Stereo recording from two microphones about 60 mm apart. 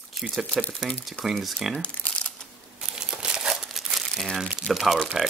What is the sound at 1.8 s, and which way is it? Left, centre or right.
Crumpling, centre.